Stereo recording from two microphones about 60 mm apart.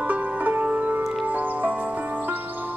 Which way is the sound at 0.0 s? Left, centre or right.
Right.